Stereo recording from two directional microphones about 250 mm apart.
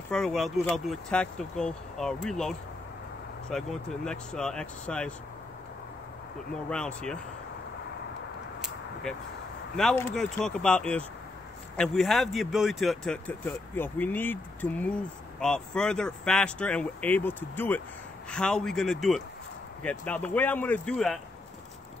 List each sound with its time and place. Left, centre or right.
0.1 s speech: centre
6.7 s speech: centre
9.8 s speech: centre